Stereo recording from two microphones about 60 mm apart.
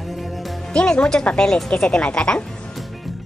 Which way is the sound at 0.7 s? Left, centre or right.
Centre.